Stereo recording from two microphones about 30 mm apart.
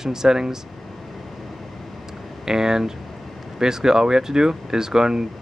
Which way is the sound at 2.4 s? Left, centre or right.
Centre.